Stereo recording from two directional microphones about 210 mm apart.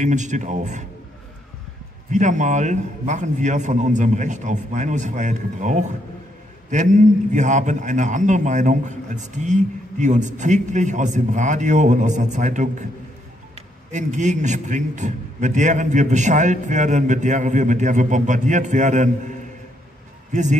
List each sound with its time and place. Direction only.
0.0 s a man's voice: 35° right (ahead or behind)
2.0 s a man's voice: 35° right (ahead or behind)
13.9 s a man's voice: 35° right (ahead or behind)